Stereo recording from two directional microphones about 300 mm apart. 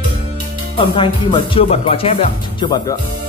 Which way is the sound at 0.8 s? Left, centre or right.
Centre.